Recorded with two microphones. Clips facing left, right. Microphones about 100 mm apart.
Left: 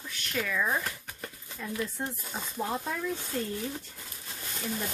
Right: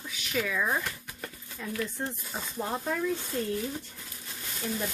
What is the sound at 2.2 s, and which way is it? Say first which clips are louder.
Speech: even; centre (ahead or behind).